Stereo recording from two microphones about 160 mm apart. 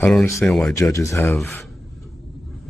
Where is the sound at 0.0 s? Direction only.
10° left (ahead or behind).